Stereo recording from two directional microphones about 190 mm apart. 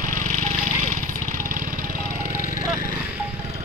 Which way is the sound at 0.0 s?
45° right (ahead or behind).